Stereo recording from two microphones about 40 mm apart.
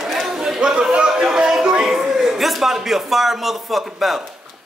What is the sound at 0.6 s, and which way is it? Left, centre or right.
Speech, centre.